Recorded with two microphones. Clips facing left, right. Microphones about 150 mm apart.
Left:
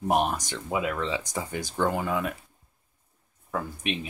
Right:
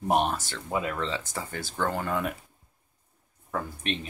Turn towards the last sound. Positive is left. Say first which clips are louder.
# left 1 dB
turn(degrees=10)  # may be behind; listen again after turning